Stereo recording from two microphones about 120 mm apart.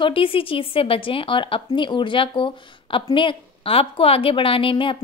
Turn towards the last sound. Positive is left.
turn(degrees=45)  # may be behind; listen again after turning